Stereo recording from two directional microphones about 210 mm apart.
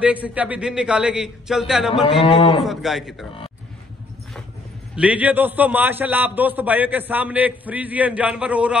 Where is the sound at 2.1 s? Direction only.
25° left (ahead or behind).